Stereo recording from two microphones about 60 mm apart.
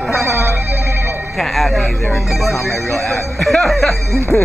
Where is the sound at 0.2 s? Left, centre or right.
Right.